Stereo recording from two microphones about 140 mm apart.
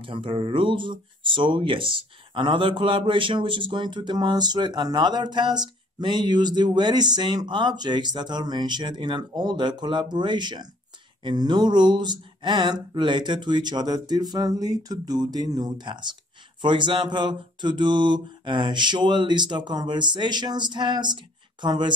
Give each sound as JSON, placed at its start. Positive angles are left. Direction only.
{"t": 0.0, "sound": "a man's voice", "side_deg": -40}